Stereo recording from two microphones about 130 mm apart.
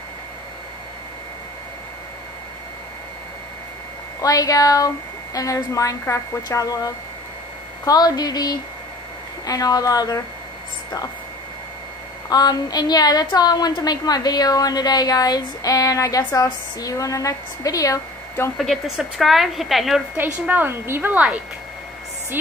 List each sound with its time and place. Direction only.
4.2 s a woman's voice: 25° left (ahead or behind)
12.3 s a woman's voice: 30° left (ahead or behind)
18.6 s a woman's voice: centre (ahead or behind)
20.4 s a woman's voice: 15° right (ahead or behind)